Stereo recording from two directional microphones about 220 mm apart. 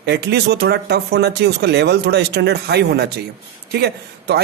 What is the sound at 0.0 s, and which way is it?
Speech, 50° right (ahead or behind).